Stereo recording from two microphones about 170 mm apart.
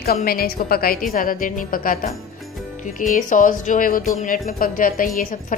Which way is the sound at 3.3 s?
50° left (ahead or behind).